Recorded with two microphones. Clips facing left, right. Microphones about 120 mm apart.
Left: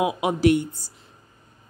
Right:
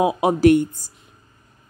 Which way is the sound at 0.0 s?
35° right (ahead or behind).